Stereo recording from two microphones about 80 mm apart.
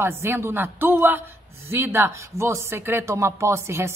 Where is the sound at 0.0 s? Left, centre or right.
Right.